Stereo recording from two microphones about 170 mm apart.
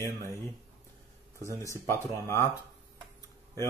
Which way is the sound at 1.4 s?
15° left (ahead or behind).